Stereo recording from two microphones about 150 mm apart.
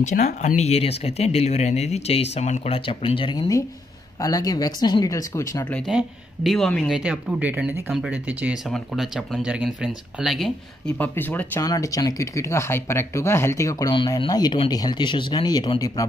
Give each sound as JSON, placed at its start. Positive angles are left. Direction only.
{"t": 0.0, "sound": "speech", "side_deg": 50}
{"t": 5.9, "sound": "speech", "side_deg": 0}
{"t": 7.0, "sound": "speech", "side_deg": -5}
{"t": 11.0, "sound": "speech", "side_deg": 10}
{"t": 11.6, "sound": "speech", "side_deg": 25}